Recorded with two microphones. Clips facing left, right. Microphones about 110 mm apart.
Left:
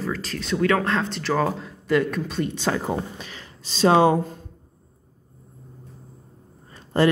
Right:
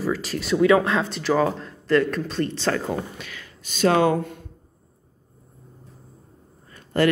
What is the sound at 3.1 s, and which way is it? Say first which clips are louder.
Speech: even; 30° left (ahead or behind).